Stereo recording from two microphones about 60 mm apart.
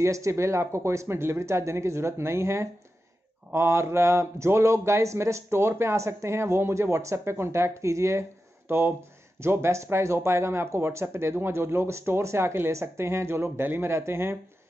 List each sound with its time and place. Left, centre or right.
0.0 s speech: right